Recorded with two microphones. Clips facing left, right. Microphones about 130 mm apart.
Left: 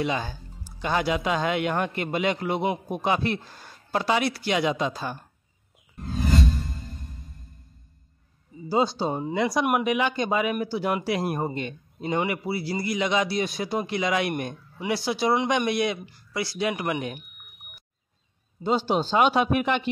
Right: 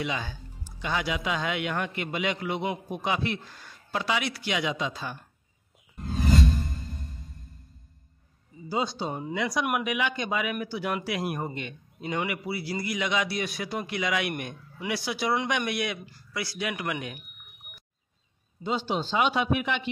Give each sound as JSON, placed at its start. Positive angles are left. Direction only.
{"t": 0.0, "sound": "speech", "side_deg": 40}
{"t": 6.1, "sound": "whoosh", "side_deg": 0}
{"t": 8.6, "sound": "speech", "side_deg": 30}
{"t": 18.6, "sound": "speech", "side_deg": 40}